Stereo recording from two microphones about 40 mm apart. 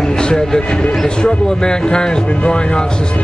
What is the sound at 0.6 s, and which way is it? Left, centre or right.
Speech, left.